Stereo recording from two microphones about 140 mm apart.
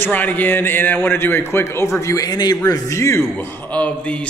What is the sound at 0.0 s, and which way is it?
A man's voice, 10° left (ahead or behind).